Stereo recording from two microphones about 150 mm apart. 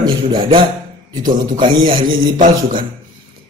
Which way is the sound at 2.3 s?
60° right (ahead or behind).